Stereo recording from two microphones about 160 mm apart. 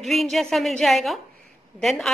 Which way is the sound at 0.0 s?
Centre (ahead or behind).